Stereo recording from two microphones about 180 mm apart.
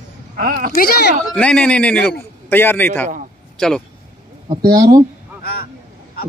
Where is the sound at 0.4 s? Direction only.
55° right (ahead or behind).